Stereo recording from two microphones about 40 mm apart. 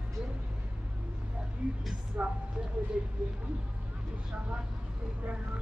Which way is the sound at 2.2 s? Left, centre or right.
Right.